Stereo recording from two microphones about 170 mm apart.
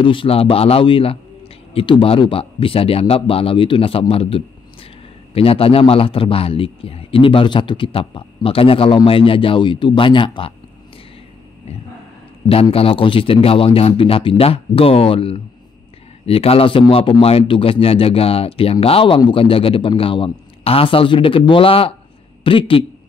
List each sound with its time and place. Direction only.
0.0 s a man's voice: 30° left (ahead or behind)
12.4 s a man's voice: 35° left (ahead or behind)